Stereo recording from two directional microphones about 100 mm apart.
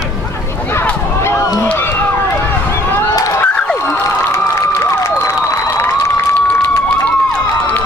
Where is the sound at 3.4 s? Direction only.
10° left (ahead or behind).